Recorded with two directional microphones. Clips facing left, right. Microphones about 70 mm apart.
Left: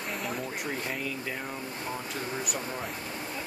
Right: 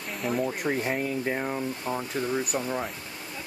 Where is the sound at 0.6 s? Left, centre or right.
Right.